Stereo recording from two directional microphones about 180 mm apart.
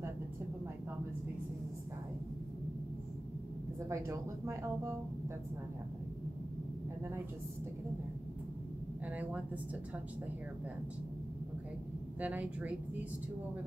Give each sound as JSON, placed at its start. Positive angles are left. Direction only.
{"t": 3.9, "sound": "speech", "side_deg": -15}
{"t": 9.0, "sound": "speech", "side_deg": -10}
{"t": 12.2, "sound": "speech", "side_deg": -10}